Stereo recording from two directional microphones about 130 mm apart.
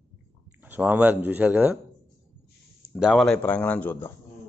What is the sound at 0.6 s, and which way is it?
A man's voice, 15° right (ahead or behind).